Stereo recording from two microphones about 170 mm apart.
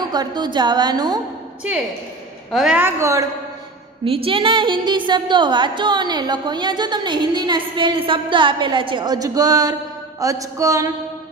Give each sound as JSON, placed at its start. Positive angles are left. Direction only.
{"t": 0.0, "sound": "a woman's voice", "side_deg": -25}
{"t": 2.5, "sound": "a woman's voice", "side_deg": -5}
{"t": 4.0, "sound": "a woman's voice", "side_deg": -30}